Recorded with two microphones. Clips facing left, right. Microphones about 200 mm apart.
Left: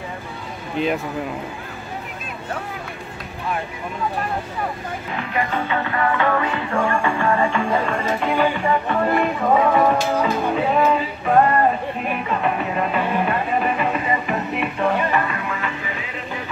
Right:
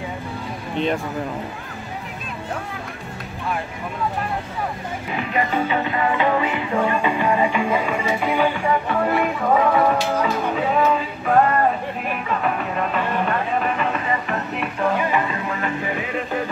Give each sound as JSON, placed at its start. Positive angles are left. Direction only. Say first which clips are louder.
{"t": 5.3, "sound": "music", "louder": "right 2 dB", "side_deg": -15}
{"t": 15.0, "sound": "music", "louder": "even", "side_deg": -15}
{"t": 15.4, "sound": "music", "louder": "right 3 dB", "side_deg": -40}